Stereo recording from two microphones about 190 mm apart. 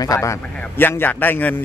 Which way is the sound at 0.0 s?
15° left (ahead or behind).